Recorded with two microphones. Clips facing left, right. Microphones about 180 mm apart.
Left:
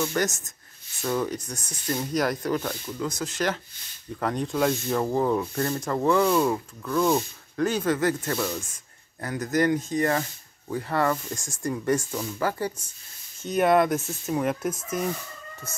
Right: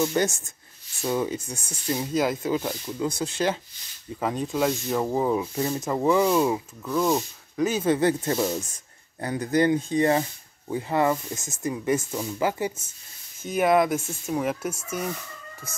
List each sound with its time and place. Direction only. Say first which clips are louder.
0.0 s speech: right 3 dB; 25° right (ahead or behind)
1.0 s speech: right 1 dB; 15° right (ahead or behind)
3.1 s speech: right 2 dB; 30° right (ahead or behind)
4.2 s speech: even; 5° right (ahead or behind)
7.8 s speech: right 3 dB; 25° right (ahead or behind); by 14.8 s 5° right (ahead or behind)